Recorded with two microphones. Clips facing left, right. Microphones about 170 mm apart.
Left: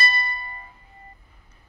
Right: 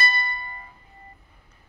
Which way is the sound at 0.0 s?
30° left (ahead or behind).